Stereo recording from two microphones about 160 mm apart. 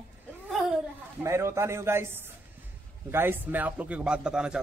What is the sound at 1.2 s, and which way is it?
A man's voice, 15° right (ahead or behind).